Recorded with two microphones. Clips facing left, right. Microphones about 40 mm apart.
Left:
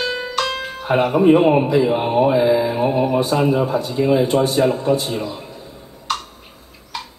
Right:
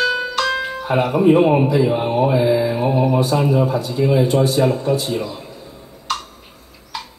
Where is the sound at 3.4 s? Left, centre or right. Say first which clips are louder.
Even; left.